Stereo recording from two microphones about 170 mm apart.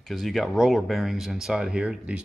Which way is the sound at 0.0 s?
Centre (ahead or behind).